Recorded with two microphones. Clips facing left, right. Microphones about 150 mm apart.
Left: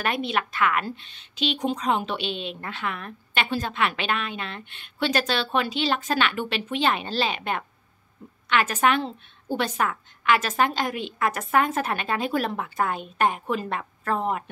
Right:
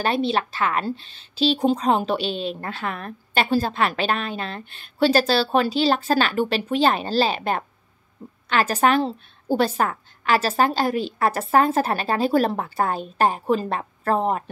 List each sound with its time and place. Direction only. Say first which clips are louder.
0.0 s speech: right 4 dB; 30° right (ahead or behind)